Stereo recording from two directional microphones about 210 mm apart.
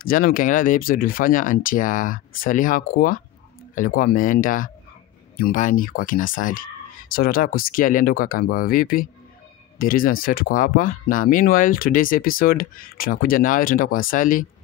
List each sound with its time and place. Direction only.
0.0 s speech: 40° left (ahead or behind)